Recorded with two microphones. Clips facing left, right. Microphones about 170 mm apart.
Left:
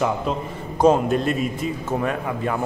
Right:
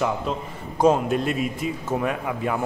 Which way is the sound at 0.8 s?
5° right (ahead or behind).